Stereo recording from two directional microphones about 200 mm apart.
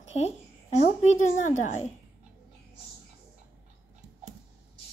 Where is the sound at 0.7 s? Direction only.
35° left (ahead or behind).